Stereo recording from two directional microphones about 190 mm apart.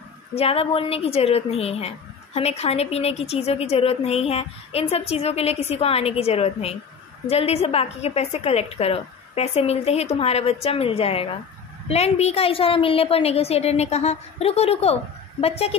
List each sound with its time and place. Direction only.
0.3 s a woman's voice: 30° left (ahead or behind)